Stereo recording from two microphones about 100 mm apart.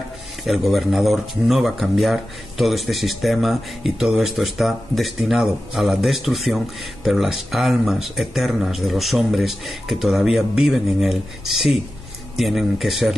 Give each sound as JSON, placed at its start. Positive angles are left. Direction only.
{"t": 0.5, "sound": "speech", "side_deg": 0}